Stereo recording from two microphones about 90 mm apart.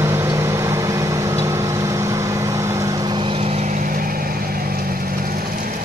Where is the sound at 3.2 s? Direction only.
85° right.